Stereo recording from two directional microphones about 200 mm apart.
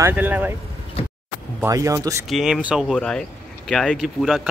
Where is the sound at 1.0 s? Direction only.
30° left (ahead or behind).